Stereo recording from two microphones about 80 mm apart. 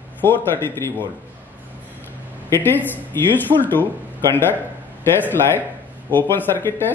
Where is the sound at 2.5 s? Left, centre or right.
Left.